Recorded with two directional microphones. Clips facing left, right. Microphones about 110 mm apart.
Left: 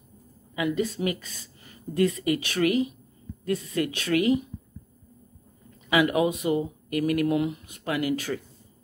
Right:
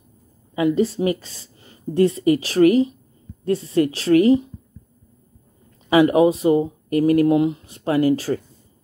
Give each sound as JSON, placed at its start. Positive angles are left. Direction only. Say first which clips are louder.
{"t": 0.6, "sound": "speech", "louder": "right 8 dB", "side_deg": -30}
{"t": 5.9, "sound": "speech", "louder": "right 8 dB", "side_deg": -35}